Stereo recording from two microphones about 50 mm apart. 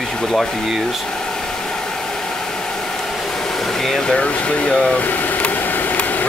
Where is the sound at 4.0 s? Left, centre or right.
Left.